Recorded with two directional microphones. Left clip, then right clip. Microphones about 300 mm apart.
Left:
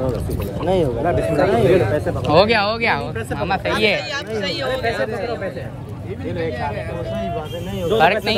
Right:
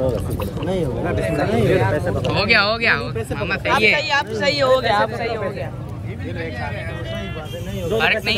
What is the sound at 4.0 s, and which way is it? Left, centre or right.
Speech, centre.